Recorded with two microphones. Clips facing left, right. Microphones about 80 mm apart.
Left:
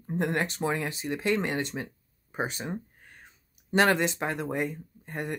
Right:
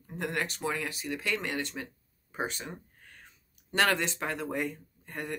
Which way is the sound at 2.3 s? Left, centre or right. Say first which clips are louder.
Left 4 dB; left.